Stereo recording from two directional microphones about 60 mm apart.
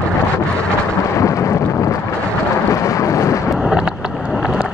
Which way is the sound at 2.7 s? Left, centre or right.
Left.